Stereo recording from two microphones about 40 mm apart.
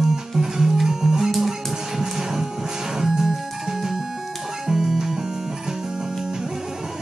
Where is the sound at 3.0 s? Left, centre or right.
Centre.